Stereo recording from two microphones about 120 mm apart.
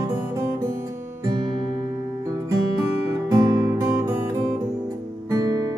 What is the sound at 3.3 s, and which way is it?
Music, 25° right (ahead or behind).